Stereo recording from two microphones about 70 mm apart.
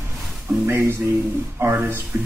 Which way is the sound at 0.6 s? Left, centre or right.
Right.